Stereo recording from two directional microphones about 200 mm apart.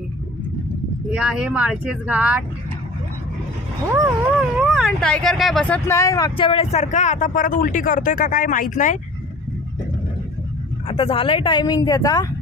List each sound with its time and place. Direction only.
1.1 s speech: 5° right (ahead or behind)
3.9 s speech: 10° right (ahead or behind); by 8.9 s 40° left (ahead or behind)
10.9 s a woman's voice: 25° left (ahead or behind)